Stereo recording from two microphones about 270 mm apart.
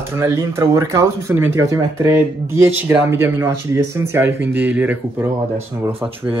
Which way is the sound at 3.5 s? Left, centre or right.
Right.